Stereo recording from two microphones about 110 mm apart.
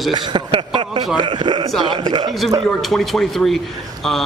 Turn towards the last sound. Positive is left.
turn(degrees=5)  # may be behind; listen again after turning